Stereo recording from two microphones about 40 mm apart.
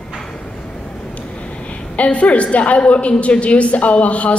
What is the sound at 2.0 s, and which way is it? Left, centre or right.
A man's voice, left.